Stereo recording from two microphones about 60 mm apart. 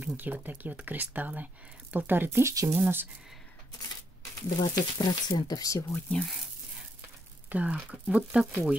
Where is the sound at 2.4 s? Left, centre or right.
Right.